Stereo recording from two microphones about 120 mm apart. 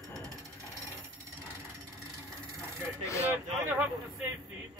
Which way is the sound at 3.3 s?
10° right (ahead or behind).